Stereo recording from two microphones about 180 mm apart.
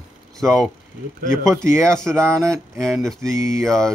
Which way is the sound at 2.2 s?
15° right (ahead or behind).